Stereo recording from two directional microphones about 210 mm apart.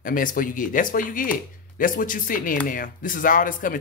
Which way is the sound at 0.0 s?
40° left (ahead or behind).